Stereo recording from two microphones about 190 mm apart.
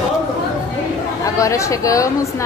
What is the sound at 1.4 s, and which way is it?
Speech, 15° left (ahead or behind).